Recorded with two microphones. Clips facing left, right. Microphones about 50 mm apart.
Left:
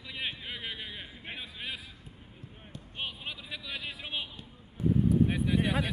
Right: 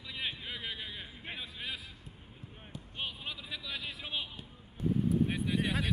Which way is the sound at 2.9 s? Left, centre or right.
Centre.